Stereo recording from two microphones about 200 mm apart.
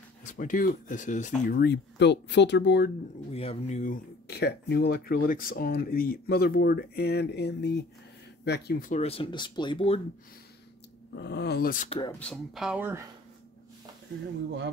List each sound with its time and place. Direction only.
0.3 s speech: 40° left (ahead or behind); by 2.9 s 55° left (ahead or behind)
3.3 s speech: 30° left (ahead or behind); by 9.0 s 45° left (ahead or behind)
9.0 s speech: 25° left (ahead or behind)
11.1 s speech: 55° left (ahead or behind); by 12.0 s 40° left (ahead or behind)
12.2 s speech: centre (ahead or behind)